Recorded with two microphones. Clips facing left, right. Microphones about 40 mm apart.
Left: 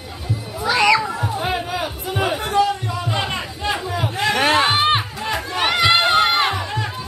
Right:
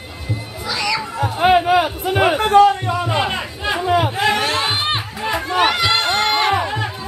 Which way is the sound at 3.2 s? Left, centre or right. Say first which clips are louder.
Right 3 dB; centre.